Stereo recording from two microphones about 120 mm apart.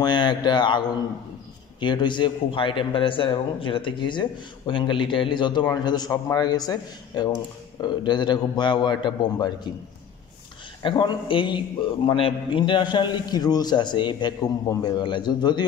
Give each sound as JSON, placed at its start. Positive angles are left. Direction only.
{"t": 0.0, "sound": "a man's voice", "side_deg": 40}
{"t": 10.8, "sound": "a man's voice", "side_deg": 40}